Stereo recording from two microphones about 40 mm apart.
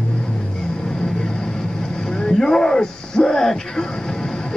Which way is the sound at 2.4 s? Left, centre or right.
Centre.